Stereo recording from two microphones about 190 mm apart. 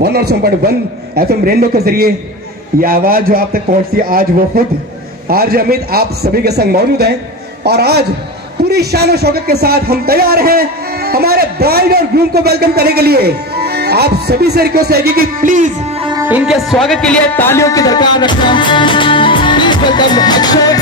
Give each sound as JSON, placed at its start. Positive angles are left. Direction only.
{"t": 0.0, "sound": "a man's voice", "side_deg": -55}
{"t": 16.0, "sound": "music", "side_deg": -20}
{"t": 16.3, "sound": "speech", "side_deg": -5}